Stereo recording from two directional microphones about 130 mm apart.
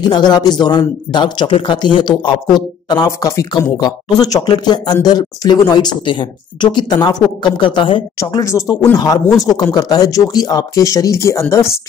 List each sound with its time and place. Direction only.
0.1 s speech: 35° left (ahead or behind)
8.2 s speech: 25° left (ahead or behind)